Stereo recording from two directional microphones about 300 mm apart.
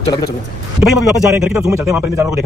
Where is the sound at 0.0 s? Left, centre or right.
Centre.